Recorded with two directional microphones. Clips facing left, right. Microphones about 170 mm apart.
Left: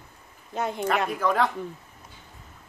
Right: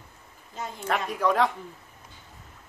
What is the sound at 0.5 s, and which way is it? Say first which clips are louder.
Speech: left 8 dB; 70° left (ahead or behind).